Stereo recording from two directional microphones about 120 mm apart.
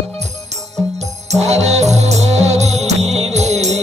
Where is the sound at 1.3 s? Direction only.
65° right (ahead or behind).